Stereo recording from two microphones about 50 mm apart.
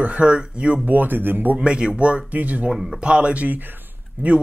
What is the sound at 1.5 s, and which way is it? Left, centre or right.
Speech, right.